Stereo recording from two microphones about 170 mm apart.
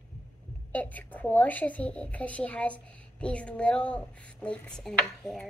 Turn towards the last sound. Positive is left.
turn(degrees=5)  # may be behind; listen again after turning